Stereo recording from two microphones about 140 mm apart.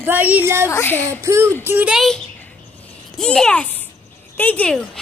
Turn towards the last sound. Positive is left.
turn(degrees=10)  # may be behind; listen again after turning